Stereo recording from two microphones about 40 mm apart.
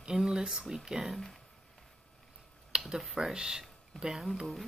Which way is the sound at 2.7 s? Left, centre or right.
Centre.